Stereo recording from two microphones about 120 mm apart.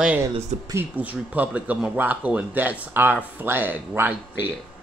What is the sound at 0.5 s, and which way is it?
Speech, 70° right (ahead or behind).